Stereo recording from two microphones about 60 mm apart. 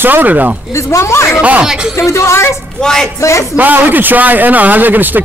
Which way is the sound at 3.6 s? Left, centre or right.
Right.